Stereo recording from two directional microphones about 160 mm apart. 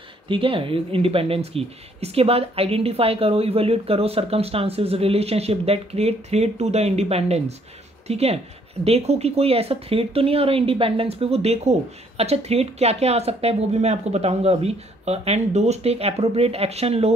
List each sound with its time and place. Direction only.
0.3 s speech: 35° right (ahead or behind)